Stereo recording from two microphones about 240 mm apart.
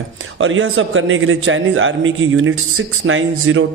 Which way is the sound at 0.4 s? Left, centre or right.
Right.